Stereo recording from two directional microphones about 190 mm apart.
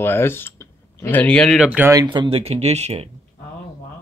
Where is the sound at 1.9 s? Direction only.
20° right (ahead or behind).